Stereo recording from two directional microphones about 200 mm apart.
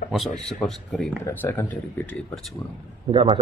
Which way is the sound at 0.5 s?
Centre (ahead or behind).